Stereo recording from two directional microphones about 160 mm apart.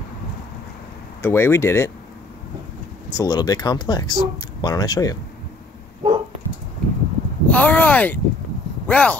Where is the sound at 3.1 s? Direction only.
20° left (ahead or behind).